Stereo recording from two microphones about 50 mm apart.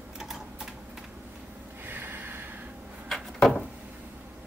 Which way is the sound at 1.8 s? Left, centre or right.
Right.